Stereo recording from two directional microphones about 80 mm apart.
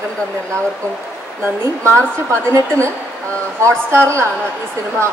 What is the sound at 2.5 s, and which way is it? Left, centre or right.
A woman's voice, right.